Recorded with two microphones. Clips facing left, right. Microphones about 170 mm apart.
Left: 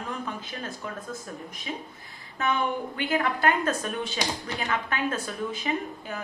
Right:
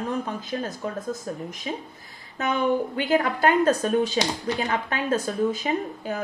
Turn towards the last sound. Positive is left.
turn(degrees=-40)  # may be behind; listen again after turning